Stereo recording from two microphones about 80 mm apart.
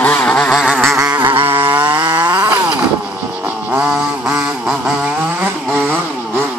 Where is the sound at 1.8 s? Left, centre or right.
Right.